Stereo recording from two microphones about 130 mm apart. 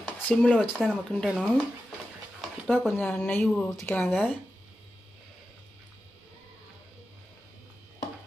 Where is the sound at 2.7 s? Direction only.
5° left (ahead or behind).